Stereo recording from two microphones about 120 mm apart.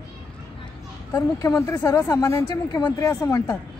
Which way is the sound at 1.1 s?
25° left (ahead or behind).